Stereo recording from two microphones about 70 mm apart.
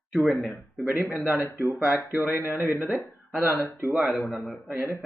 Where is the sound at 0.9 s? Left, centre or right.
Right.